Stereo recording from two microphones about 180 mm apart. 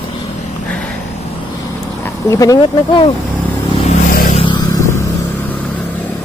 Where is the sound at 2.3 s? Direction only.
20° left (ahead or behind).